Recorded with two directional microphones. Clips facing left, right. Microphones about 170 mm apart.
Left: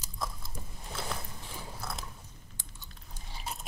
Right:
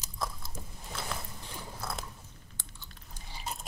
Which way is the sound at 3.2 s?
Centre (ahead or behind).